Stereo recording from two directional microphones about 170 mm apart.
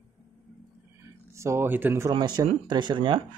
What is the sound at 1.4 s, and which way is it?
Speech, 15° right (ahead or behind).